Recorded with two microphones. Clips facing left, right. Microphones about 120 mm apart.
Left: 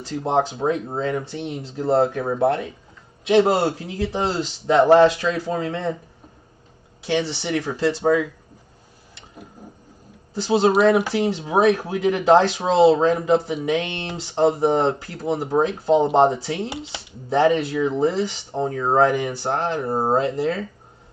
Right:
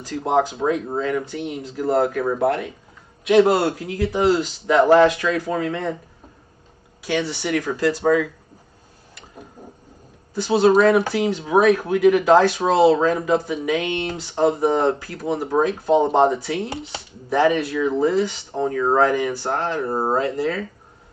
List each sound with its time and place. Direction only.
0.3 s speech: 25° left (ahead or behind)
7.0 s speech: 25° left (ahead or behind)
10.3 s speech: 25° left (ahead or behind)